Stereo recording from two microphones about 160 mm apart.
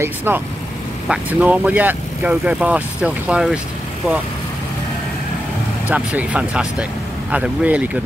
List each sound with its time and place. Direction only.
0.0 s speech: 15° right (ahead or behind)
5.9 s speech: 10° right (ahead or behind)